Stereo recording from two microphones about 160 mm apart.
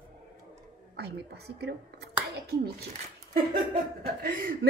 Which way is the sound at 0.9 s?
90° right.